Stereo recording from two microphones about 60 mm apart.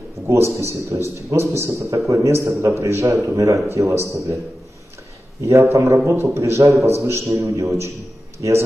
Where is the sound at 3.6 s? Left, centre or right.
Right.